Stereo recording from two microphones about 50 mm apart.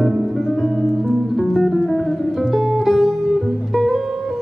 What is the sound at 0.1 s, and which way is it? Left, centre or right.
Music, centre.